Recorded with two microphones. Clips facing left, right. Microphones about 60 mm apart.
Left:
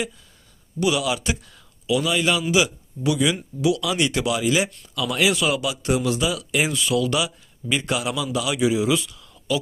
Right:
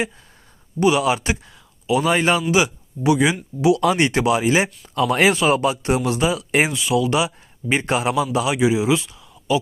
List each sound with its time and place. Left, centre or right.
0.7 s speech: right
6.7 s speech: right